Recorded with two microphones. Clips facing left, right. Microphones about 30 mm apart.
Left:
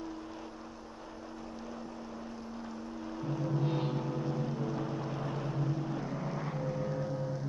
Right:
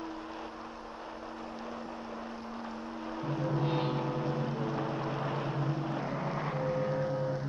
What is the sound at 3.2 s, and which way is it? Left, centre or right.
Vehicle, right.